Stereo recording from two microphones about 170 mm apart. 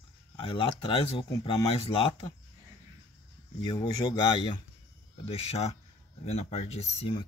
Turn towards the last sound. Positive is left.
turn(degrees=40)  # may be behind; listen again after turning